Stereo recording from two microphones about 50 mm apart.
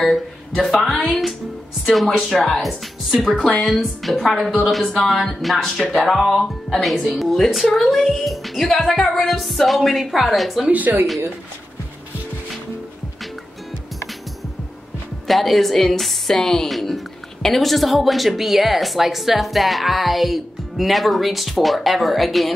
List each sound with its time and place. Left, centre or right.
0.0 s a woman's voice: centre
5.9 s a woman's voice: centre
10.7 s speech: right
15.2 s a woman's voice: centre